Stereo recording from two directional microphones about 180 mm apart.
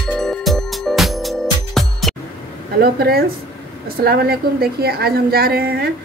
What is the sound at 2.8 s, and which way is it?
A woman's voice, 60° right (ahead or behind).